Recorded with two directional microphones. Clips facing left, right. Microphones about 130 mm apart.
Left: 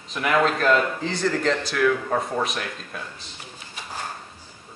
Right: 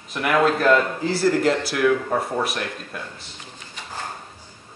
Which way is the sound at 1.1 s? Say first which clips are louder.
Right 4 dB; 10° right (ahead or behind).